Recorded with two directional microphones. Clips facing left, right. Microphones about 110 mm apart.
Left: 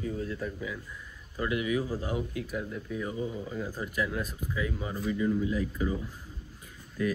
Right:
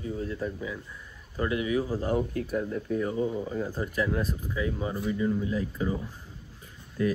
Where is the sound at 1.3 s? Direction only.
30° right (ahead or behind).